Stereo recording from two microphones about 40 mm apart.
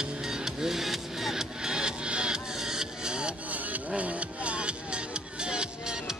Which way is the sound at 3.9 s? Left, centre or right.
Right.